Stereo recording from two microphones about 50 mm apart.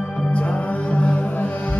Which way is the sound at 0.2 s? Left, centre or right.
Left.